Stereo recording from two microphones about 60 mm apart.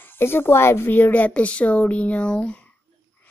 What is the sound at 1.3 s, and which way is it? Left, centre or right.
Speech, centre.